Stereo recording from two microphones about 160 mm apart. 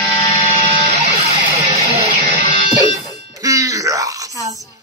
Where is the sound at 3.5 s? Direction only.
20° right (ahead or behind).